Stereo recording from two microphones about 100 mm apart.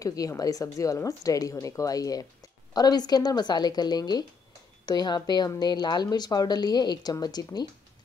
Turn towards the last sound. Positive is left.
turn(degrees=40)  # may be behind; listen again after turning